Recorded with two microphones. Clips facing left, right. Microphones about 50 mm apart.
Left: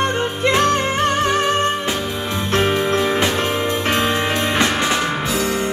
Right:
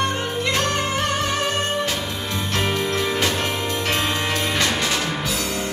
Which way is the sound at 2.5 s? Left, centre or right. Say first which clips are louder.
Left 6 dB; left.